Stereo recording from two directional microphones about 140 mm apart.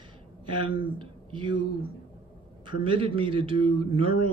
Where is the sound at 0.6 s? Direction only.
35° right (ahead or behind).